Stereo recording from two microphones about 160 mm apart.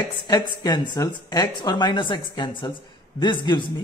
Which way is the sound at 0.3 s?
25° left (ahead or behind).